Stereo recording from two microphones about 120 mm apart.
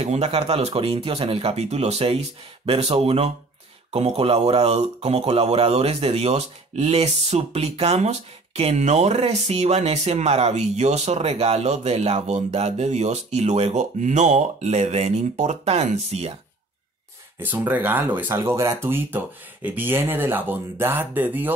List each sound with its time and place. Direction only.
0.0 s speech: 60° right (ahead or behind)
17.4 s speech: 15° right (ahead or behind)